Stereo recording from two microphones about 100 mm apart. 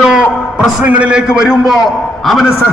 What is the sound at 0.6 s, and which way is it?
A man's voice, 10° right (ahead or behind).